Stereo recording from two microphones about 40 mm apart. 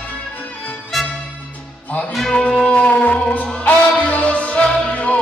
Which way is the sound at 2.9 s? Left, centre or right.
Left.